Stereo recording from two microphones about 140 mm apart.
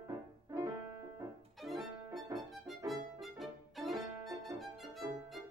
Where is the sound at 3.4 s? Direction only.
Centre (ahead or behind).